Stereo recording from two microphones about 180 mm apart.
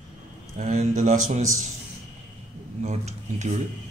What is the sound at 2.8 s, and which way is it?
Speech, 40° right (ahead or behind).